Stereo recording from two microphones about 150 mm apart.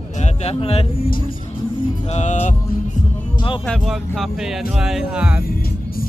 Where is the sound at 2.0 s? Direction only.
45° left (ahead or behind).